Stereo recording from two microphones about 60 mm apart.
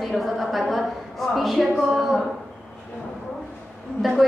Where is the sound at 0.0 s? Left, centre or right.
Centre.